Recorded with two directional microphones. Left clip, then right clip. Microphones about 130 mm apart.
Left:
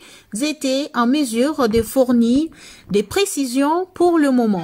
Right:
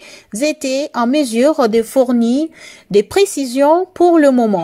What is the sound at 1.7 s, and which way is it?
Speech, 25° right (ahead or behind).